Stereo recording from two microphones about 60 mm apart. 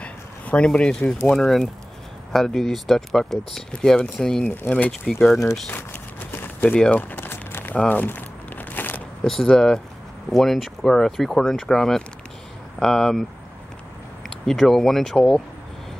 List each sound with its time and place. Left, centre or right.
0.0 s speech: centre
3.7 s speech: centre
4.5 s speech: left
5.0 s speech: centre
5.7 s a sound: left
6.9 s speech: left
7.2 s a sound: left
7.9 s crumpling: left
9.2 s speech: centre
14.2 s speech: centre